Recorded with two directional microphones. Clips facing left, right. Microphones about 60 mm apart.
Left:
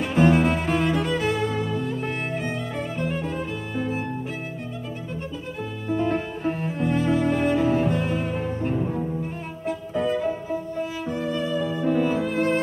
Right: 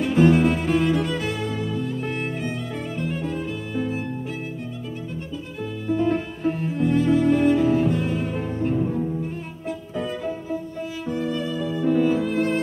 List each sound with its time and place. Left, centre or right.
0.0 s music: left
1.0 s music: left
5.6 s music: left
8.4 s music: centre
9.7 s violin: left
11.1 s music: left